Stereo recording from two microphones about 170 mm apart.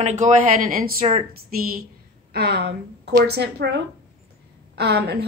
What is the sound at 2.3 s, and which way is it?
A woman's voice, 70° right (ahead or behind).